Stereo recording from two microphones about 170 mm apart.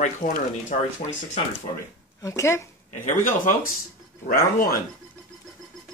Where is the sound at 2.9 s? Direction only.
50° left (ahead or behind).